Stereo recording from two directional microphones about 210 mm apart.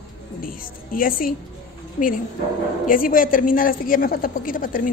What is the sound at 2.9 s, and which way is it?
Speech, 40° left (ahead or behind).